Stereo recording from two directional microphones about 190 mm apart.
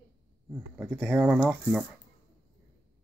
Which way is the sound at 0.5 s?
5° right (ahead or behind).